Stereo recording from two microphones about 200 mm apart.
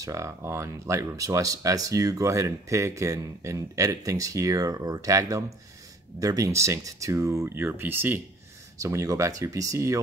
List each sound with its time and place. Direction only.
0.0 s speech: 15° right (ahead or behind)